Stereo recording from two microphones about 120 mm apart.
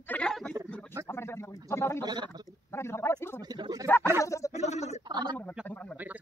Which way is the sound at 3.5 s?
35° right (ahead or behind).